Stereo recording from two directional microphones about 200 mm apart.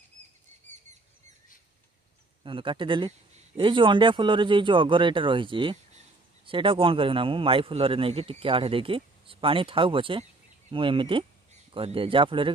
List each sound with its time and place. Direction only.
2.4 s a man's voice: 25° right (ahead or behind)